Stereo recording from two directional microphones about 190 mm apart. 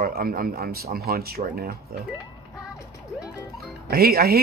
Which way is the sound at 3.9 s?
55° right (ahead or behind).